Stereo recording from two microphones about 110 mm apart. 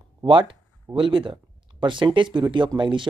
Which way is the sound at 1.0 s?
50° right (ahead or behind).